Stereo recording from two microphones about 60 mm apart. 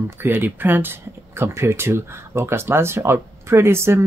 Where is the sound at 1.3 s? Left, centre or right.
Right.